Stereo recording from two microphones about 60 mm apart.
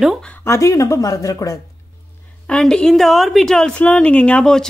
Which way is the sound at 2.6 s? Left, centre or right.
Centre.